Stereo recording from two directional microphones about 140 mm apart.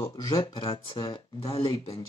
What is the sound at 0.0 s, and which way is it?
Speech, 25° left (ahead or behind).